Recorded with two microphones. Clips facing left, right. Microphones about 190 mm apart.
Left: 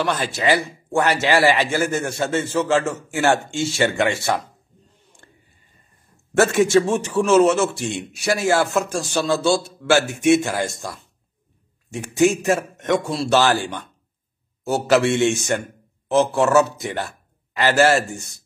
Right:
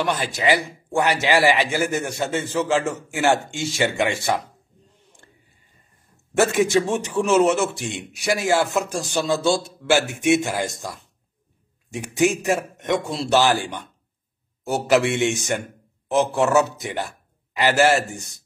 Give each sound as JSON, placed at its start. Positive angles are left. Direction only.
{"t": 0.0, "sound": "a man's voice", "side_deg": -15}
{"t": 6.3, "sound": "a man's voice", "side_deg": -15}